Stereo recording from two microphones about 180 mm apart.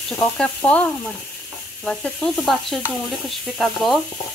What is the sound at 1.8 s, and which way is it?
Sizzle, 5° left (ahead or behind).